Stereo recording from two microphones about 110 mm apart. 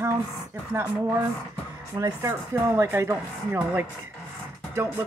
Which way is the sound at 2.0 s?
40° right (ahead or behind).